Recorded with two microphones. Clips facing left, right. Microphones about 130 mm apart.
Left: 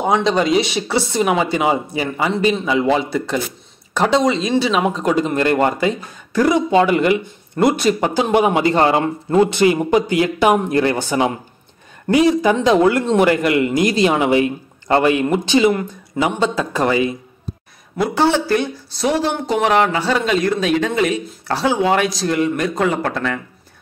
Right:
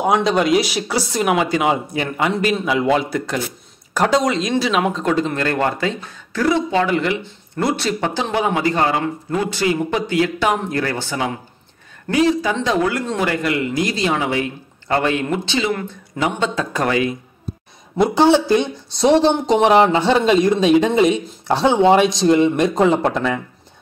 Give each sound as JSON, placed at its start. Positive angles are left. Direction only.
{"t": 0.0, "sound": "a man's voice", "side_deg": -5}
{"t": 8.7, "sound": "a man's voice", "side_deg": 30}
{"t": 16.3, "sound": "speech", "side_deg": 5}
{"t": 17.9, "sound": "a woman's voice", "side_deg": -20}